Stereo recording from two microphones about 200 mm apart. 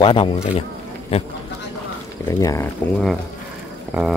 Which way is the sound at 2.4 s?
15° left (ahead or behind).